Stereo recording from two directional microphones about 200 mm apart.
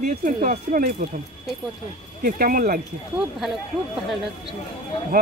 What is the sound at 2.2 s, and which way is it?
Speech, 45° right (ahead or behind).